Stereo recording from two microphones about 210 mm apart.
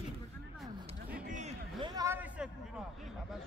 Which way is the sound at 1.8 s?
15° right (ahead or behind).